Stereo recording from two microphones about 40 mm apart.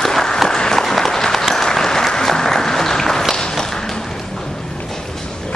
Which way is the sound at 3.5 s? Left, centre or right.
Centre.